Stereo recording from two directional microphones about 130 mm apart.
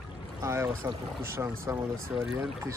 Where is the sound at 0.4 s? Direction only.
20° right (ahead or behind).